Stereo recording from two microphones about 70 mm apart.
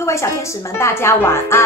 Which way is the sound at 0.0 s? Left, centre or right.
Left.